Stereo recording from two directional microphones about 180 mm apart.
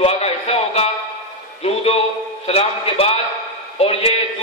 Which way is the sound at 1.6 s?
35° left (ahead or behind).